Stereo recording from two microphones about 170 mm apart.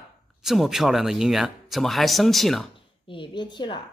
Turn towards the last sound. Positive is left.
turn(degrees=25)  # may be behind; listen again after turning